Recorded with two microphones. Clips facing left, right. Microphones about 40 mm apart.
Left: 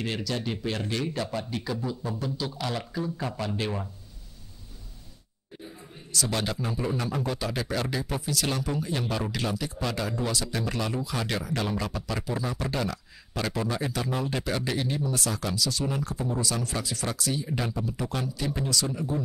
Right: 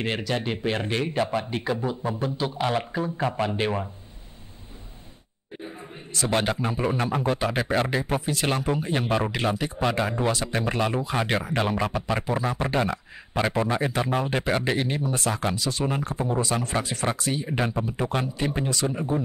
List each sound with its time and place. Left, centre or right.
0.0 s a man's voice: right
6.1 s a man's voice: right